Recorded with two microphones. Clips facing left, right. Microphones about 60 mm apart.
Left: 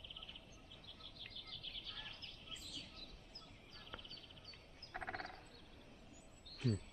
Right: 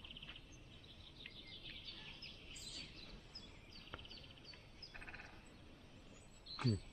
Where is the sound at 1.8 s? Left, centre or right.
Left.